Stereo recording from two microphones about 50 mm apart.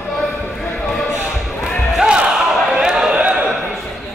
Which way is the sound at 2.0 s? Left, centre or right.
Centre.